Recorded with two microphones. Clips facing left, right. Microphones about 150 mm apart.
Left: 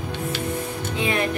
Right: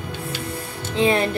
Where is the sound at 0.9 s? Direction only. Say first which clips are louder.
Right 5 dB; 30° right (ahead or behind).